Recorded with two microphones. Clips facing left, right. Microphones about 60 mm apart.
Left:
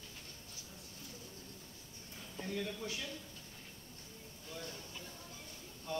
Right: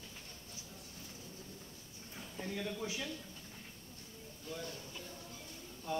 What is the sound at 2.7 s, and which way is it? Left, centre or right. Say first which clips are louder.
Speech: right 2 dB; centre.